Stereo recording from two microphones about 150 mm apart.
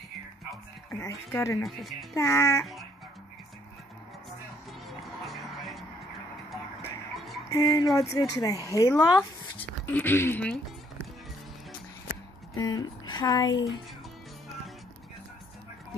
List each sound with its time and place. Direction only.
1.0 s speech: 20° left (ahead or behind)
1.6 s speech: centre (ahead or behind)
2.1 s speech: 20° left (ahead or behind)
4.8 s music: centre (ahead or behind)
7.2 s music: centre (ahead or behind)
7.4 s music: 25° left (ahead or behind)
8.1 s speech: 25° left (ahead or behind)
9.8 s speech: 15° left (ahead or behind)
12.5 s speech: 25° left (ahead or behind)